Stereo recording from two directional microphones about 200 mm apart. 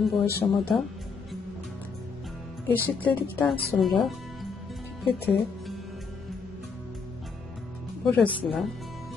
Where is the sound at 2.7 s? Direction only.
10° left (ahead or behind).